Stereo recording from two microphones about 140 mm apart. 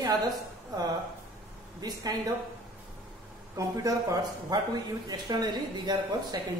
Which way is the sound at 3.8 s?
25° right (ahead or behind).